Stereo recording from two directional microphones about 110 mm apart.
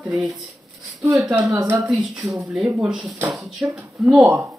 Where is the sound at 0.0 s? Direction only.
Centre (ahead or behind).